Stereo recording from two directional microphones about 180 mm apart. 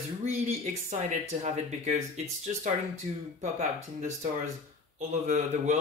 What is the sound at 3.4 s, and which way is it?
Speech, 40° right (ahead or behind).